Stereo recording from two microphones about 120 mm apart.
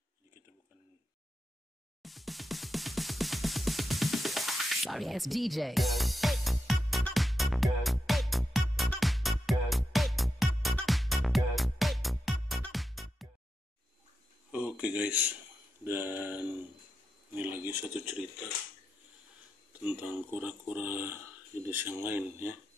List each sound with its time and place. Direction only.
2.0 s music: centre (ahead or behind)
14.5 s a sound: 10° right (ahead or behind)
17.8 s speech: 5° right (ahead or behind)
19.8 s speech: 15° right (ahead or behind)